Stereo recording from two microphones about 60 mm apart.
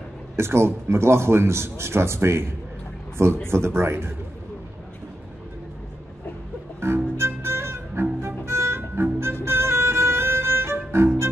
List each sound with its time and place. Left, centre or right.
0.4 s a man's voice: right
6.8 s music: right